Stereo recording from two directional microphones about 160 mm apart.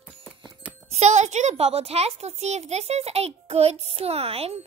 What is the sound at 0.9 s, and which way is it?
A woman's voice, 45° right (ahead or behind).